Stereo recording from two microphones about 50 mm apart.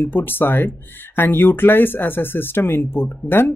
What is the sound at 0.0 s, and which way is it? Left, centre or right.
Speech, left.